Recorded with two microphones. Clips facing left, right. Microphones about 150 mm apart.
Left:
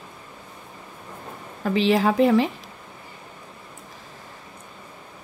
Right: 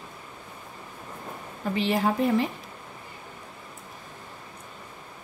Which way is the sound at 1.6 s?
90° left.